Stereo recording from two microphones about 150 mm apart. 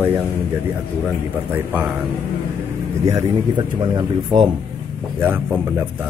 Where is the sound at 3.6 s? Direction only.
30° right (ahead or behind).